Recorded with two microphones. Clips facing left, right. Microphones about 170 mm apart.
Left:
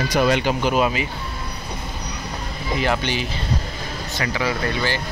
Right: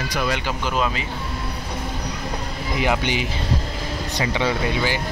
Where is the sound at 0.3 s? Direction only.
20° left (ahead or behind).